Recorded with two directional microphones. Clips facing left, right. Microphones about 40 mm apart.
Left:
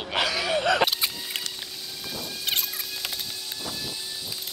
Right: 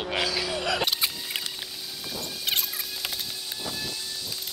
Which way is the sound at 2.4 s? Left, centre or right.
Centre.